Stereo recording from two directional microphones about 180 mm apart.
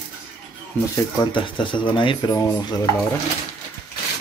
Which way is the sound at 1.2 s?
25° left (ahead or behind).